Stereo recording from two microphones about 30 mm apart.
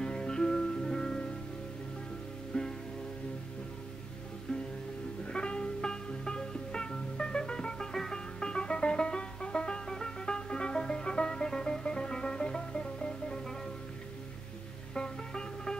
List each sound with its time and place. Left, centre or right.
0.0 s music: left
2.5 s music: left
5.2 s music: left
7.9 s music: centre
8.4 s music: left
9.8 s music: left
15.0 s music: left